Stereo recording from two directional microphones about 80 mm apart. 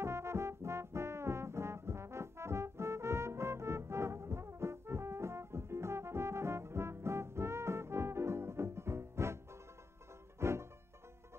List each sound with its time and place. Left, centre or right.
0.0 s brass instrument: right
10.4 s music: right